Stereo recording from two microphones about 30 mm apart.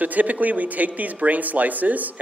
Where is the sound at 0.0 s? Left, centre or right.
Right.